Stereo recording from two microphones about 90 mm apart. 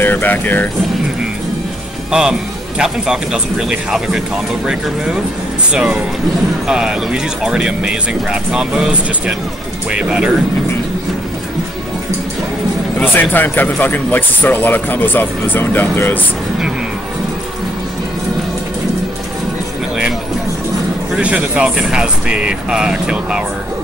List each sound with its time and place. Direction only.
0.0 s speech: 20° left (ahead or behind)
2.0 s a man's voice: 5° right (ahead or behind)
13.1 s speech: 20° left (ahead or behind)
21.1 s speech: 10° right (ahead or behind)